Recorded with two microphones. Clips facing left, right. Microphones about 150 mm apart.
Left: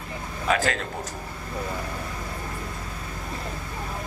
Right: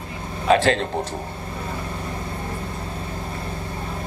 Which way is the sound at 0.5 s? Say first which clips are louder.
Right 7 dB; 30° right (ahead or behind).